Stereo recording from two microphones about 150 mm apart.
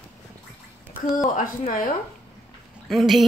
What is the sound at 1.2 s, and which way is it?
Speech, 60° left (ahead or behind).